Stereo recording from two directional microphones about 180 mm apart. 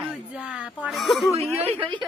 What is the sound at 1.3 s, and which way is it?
Speech, 35° right (ahead or behind).